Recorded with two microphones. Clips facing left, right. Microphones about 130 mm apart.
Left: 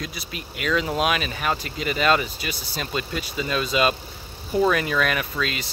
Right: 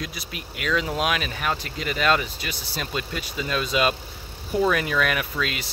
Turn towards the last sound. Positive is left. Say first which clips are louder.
# left 1 dB
turn(degrees=-5)  # may be behind; listen again after turning